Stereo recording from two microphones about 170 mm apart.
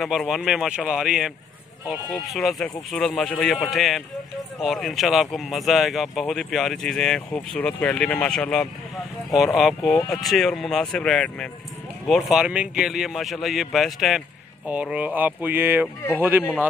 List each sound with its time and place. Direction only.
0.0 s speech: centre (ahead or behind)